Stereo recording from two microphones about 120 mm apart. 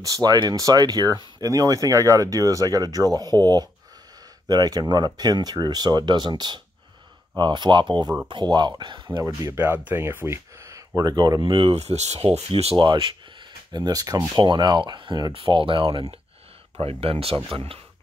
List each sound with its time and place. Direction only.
0.0 s speech: 30° right (ahead or behind)
9.2 s speech: 20° right (ahead or behind)
11.0 s speech: 35° right (ahead or behind); by 12.7 s 55° right (ahead or behind)
12.7 s speech: 40° right (ahead or behind)